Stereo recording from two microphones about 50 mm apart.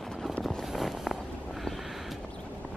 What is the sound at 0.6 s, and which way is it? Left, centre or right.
Walk, centre.